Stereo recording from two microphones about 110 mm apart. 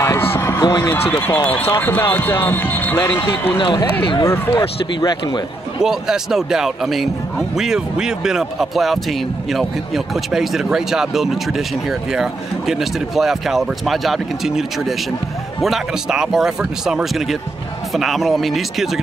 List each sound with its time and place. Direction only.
0.3 s basketball bounce: 25° left (ahead or behind)
0.7 s speech: 35° left (ahead or behind)
0.9 s speech: 20° left (ahead or behind)
3.5 s speech: 50° left (ahead or behind)
4.2 s speech: 25° left (ahead or behind)
5.0 s speech: 40° left (ahead or behind)
5.8 s speech: 5° right (ahead or behind)